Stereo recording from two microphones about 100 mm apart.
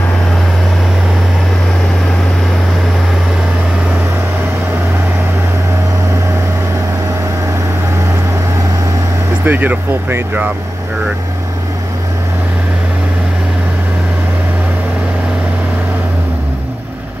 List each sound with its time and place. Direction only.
9.4 s speech: 15° right (ahead or behind)